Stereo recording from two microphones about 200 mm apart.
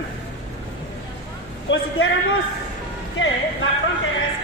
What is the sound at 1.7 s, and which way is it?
Speech, 65° left (ahead or behind).